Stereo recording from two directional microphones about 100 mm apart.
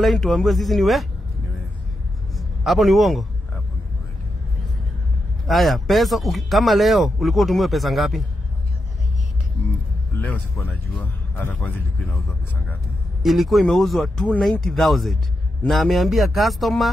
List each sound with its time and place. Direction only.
0.0 s speech: centre (ahead or behind)
2.3 s a man's voice: centre (ahead or behind)
5.5 s speech: centre (ahead or behind)
10.3 s speech: 15° left (ahead or behind)
13.2 s speech: centre (ahead or behind)